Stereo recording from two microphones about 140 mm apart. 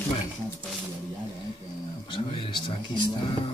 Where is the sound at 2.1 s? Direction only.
35° left (ahead or behind).